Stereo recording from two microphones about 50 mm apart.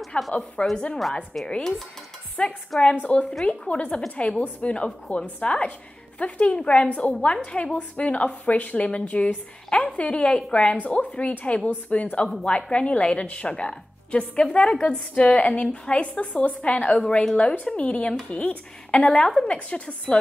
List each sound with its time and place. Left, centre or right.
0.1 s a woman's voice: left
1.4 s dishes: centre
2.4 s a woman's voice: left
19.5 s a woman's voice: left